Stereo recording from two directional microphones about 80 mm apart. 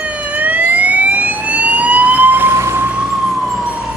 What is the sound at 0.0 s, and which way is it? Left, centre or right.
Emergency vehicle, centre.